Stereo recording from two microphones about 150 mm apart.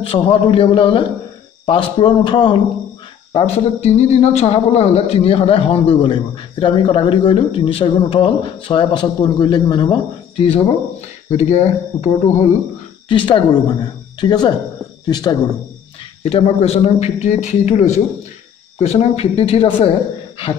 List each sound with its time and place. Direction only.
0.0 s a man's voice: 40° left (ahead or behind)
3.3 s a man's voice: 40° left (ahead or behind)
13.1 s a man's voice: 35° left (ahead or behind)
16.3 s a man's voice: 40° left (ahead or behind)